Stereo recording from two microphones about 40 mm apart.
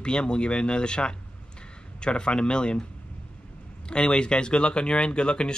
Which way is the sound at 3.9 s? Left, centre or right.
Left.